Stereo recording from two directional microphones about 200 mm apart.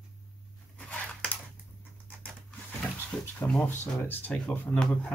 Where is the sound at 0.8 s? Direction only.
5° left (ahead or behind).